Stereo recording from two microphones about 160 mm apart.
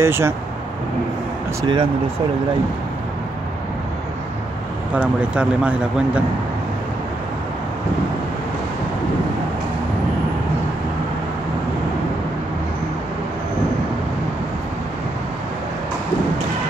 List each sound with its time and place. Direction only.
0.0 s speech: 15° right (ahead or behind)
1.6 s speech: 30° right (ahead or behind)
4.9 s speech: 5° right (ahead or behind)